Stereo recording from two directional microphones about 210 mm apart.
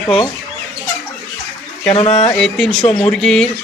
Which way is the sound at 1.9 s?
30° left (ahead or behind).